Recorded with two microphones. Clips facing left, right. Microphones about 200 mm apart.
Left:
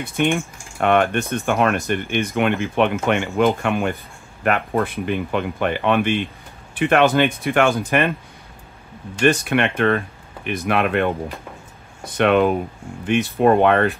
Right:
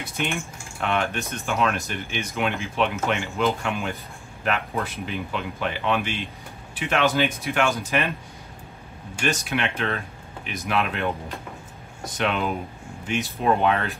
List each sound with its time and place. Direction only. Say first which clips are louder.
0.0 s speech: left 8 dB; 55° left (ahead or behind)
9.2 s speech: left 8 dB; 55° left (ahead or behind)